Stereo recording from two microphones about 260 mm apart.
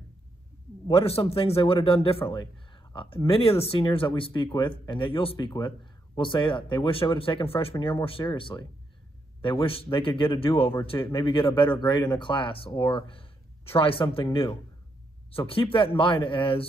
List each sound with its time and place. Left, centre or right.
0.8 s a man's voice: left